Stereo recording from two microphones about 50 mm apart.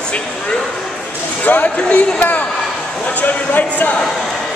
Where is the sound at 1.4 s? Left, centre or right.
Left.